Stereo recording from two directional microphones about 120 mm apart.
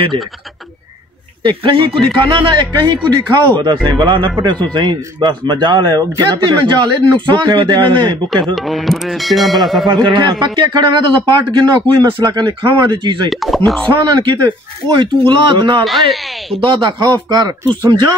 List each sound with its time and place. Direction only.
1.4 s speech: 45° right (ahead or behind)
8.5 s music: centre (ahead or behind)
9.8 s speech: 40° right (ahead or behind)
13.3 s speech: centre (ahead or behind)
13.8 s speech: 40° right (ahead or behind)
15.8 s speech: centre (ahead or behind)
16.5 s speech: 45° right (ahead or behind)